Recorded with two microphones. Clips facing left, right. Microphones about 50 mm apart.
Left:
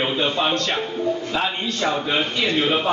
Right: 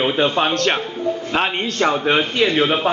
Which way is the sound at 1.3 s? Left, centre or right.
Right.